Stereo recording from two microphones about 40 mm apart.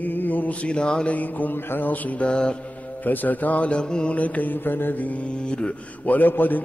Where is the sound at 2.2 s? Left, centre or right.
Left.